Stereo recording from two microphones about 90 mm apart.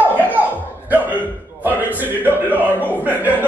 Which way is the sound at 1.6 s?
20° right (ahead or behind).